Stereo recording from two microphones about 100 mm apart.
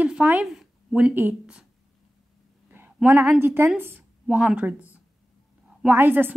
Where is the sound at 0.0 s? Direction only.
15° right (ahead or behind).